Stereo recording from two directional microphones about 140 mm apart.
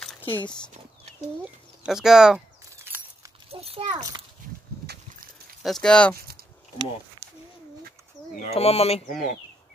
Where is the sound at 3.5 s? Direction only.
45° right (ahead or behind).